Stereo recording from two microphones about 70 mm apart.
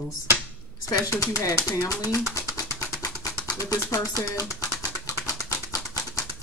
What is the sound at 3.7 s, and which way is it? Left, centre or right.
Speech, left.